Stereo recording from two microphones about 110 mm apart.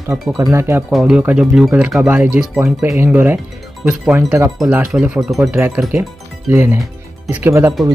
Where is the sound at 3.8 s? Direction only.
5° right (ahead or behind).